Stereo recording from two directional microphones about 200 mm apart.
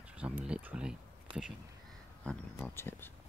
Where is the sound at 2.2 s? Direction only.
5° left (ahead or behind).